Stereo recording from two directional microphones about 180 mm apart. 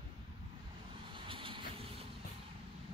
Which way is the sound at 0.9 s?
30° right (ahead or behind).